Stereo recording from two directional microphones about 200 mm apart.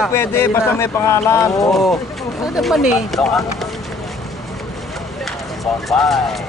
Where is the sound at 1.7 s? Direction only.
Centre (ahead or behind).